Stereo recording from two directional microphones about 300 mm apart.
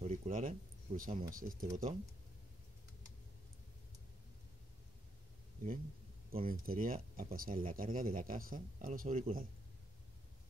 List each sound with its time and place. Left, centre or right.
0.0 s speech: right
6.3 s speech: right